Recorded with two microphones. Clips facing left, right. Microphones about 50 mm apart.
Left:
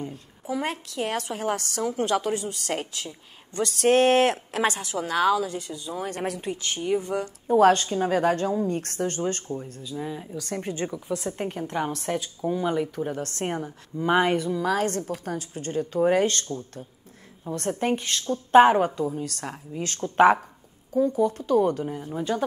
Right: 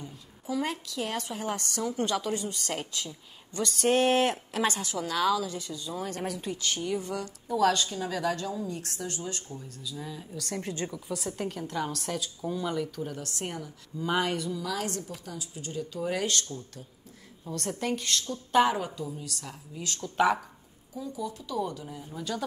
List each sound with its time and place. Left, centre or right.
0.0 s a woman's voice: left
3.8 s speech: left
4.6 s a woman's voice: left
6.1 s speech: left
6.4 s a woman's voice: left
7.4 s a woman's voice: left
10.3 s a woman's voice: centre
13.2 s a woman's voice: left
14.6 s a woman's voice: left